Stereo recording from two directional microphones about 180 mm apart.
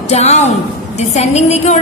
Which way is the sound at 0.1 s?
40° left (ahead or behind).